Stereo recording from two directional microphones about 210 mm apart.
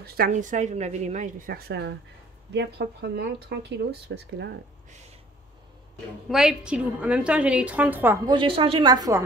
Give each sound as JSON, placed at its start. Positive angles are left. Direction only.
{"t": 0.0, "sound": "a woman's voice", "side_deg": -45}
{"t": 6.2, "sound": "a woman's voice", "side_deg": 0}
{"t": 8.3, "sound": "a woman's voice", "side_deg": -25}